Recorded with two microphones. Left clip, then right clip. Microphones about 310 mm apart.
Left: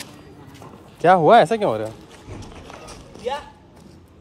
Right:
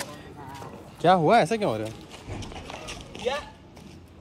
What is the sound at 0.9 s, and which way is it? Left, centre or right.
Speech, centre.